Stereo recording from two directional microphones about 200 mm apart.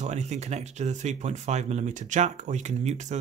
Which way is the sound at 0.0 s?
35° right (ahead or behind).